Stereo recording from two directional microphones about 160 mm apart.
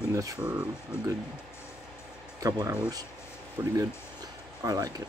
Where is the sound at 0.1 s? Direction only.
20° right (ahead or behind).